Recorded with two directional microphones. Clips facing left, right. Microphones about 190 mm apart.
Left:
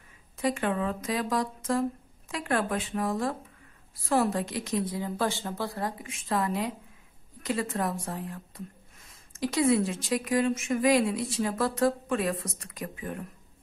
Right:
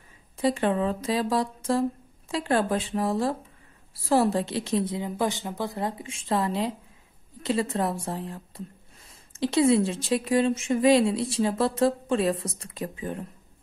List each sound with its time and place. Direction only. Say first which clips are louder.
0.4 s a woman's voice: right 4 dB; 30° right (ahead or behind)